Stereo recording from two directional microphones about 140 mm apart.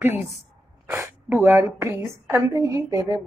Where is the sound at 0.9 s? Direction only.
20° right (ahead or behind).